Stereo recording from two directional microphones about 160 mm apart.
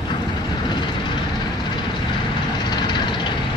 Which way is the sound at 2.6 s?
25° left (ahead or behind).